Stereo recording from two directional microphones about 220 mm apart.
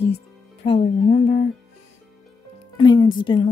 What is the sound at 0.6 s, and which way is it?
Speech, 30° left (ahead or behind).